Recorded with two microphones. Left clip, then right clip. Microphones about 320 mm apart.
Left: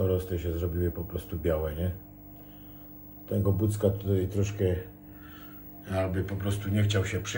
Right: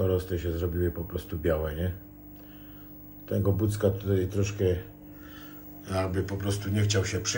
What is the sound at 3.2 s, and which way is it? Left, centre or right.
Speech, centre.